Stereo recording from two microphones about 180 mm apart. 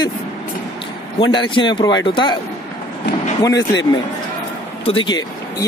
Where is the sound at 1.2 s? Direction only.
25° left (ahead or behind).